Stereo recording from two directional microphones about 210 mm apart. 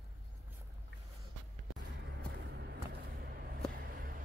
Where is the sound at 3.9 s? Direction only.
45° right (ahead or behind).